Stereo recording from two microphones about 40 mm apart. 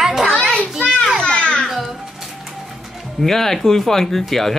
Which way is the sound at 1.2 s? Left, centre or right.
Left.